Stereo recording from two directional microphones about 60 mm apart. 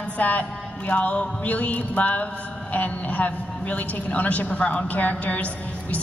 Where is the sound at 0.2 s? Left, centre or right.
Left.